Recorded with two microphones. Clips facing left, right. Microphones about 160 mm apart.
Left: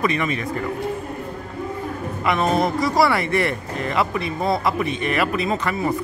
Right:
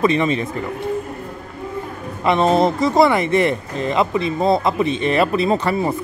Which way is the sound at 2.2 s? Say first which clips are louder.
Right 5 dB; 25° right (ahead or behind).